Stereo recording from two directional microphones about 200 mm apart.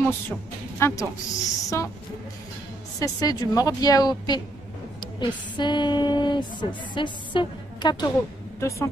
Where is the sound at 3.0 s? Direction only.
20° left (ahead or behind).